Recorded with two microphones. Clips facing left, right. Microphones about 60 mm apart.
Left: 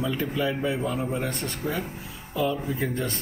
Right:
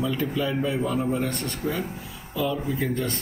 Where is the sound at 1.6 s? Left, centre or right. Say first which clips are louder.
Right 1 dB; centre.